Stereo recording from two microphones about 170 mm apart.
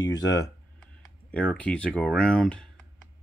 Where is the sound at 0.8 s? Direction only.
10° left (ahead or behind).